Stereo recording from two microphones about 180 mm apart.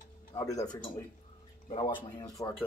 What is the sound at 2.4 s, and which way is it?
Speech, 20° left (ahead or behind).